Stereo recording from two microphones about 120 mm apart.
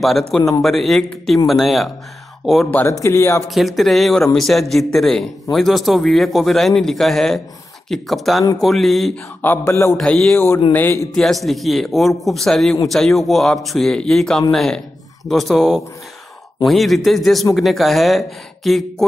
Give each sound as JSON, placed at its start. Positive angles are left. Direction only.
{"t": 0.6, "sound": "speech", "side_deg": 0}
{"t": 2.9, "sound": "speech", "side_deg": 25}
{"t": 3.4, "sound": "speech", "side_deg": 0}
{"t": 9.4, "sound": "speech", "side_deg": 20}
{"t": 9.9, "sound": "speech", "side_deg": 5}
{"t": 10.7, "sound": "speech", "side_deg": 15}
{"t": 11.1, "sound": "speech", "side_deg": 0}